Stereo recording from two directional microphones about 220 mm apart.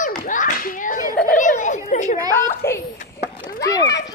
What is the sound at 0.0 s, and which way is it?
Clapping, 35° left (ahead or behind).